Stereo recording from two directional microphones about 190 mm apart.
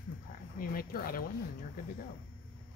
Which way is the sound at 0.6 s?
50° left (ahead or behind).